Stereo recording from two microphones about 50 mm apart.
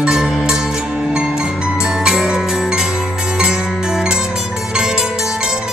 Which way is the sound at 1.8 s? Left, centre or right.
Centre.